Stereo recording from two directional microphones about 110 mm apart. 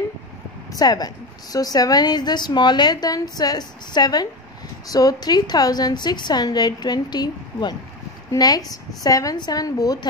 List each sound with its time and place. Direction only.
0.7 s a woman's voice: 35° left (ahead or behind)